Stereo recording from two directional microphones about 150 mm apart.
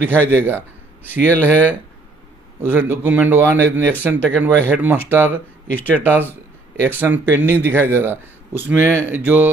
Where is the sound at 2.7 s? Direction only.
10° right (ahead or behind).